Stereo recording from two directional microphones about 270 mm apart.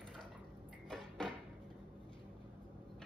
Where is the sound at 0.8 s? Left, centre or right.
Centre.